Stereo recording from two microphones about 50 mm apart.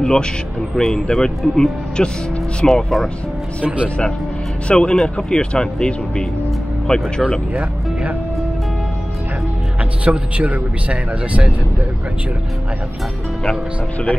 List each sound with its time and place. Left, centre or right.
0.0 s speech: centre
4.6 s a man's voice: centre
10.0 s speech: right